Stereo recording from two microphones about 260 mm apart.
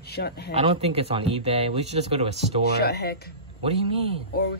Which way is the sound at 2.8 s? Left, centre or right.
Left.